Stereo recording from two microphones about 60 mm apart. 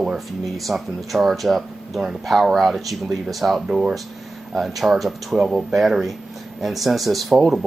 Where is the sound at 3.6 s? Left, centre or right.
Centre.